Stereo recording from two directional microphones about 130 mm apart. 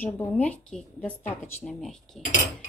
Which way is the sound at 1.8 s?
5° left (ahead or behind).